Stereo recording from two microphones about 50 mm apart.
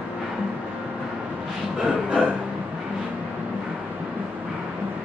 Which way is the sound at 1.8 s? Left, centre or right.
Centre.